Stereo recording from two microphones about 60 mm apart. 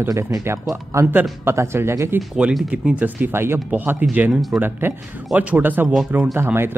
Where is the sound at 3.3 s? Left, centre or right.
Right.